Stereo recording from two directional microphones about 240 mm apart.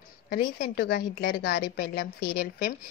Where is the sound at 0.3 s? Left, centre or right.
Left.